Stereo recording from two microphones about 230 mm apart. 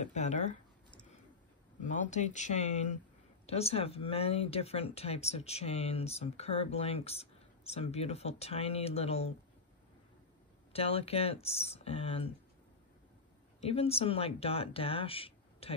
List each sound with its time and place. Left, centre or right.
0.0 s a sound: left
1.9 s speech: left
10.7 s speech: left
13.6 s speech: left